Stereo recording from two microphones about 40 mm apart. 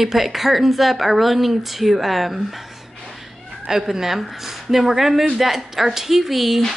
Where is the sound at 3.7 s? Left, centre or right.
Centre.